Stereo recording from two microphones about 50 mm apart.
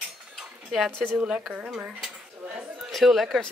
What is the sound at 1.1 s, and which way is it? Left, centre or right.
Speech, centre.